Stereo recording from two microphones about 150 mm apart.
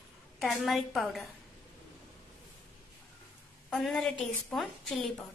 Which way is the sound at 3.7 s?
Centre (ahead or behind).